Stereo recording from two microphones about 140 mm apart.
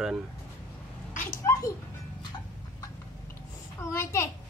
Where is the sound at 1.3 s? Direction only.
25° left (ahead or behind).